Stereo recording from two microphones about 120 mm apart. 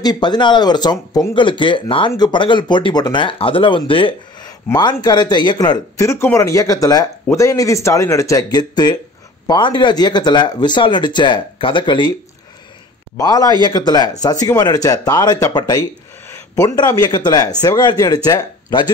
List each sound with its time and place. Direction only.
0.0 s speech: 35° left (ahead or behind)
4.7 s speech: 35° left (ahead or behind)
13.2 s speech: 30° left (ahead or behind)
16.3 s a sound: 25° left (ahead or behind)
17.0 s speech: 35° left (ahead or behind)